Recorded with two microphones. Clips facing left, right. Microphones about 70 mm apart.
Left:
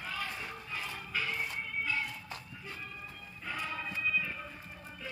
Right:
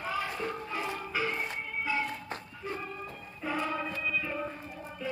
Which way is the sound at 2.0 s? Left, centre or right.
Right.